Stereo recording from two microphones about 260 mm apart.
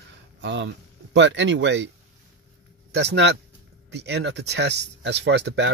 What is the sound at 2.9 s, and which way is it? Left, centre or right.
Speech, right.